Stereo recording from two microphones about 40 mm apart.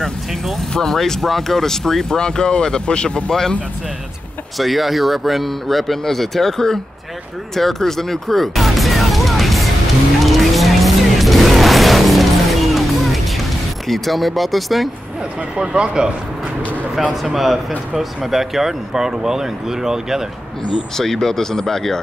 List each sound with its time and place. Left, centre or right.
0.0 s speech: centre; by 3.3 s left
3.3 s speech: centre
4.6 s speech: centre
10.2 s music: centre
13.8 s speech: centre
15.5 s speech: right
17.1 s speech: centre
20.9 s speech: centre